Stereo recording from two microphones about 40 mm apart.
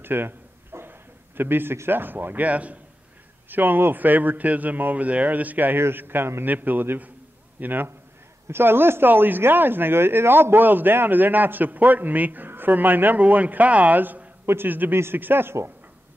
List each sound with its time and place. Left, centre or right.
0.0 s a man's voice: right
3.4 s a man's voice: right
5.9 s speech: right
6.4 s a man's voice: right
8.5 s speech: right
13.2 s speech: right
14.4 s a sound: right
14.7 s a man's voice: right